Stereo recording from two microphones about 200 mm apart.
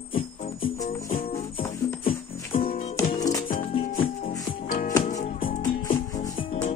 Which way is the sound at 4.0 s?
30° left (ahead or behind).